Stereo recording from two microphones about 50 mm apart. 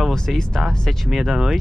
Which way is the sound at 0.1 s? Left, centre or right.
Centre.